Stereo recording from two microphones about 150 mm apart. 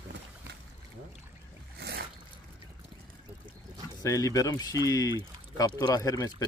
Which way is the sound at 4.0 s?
20° left (ahead or behind).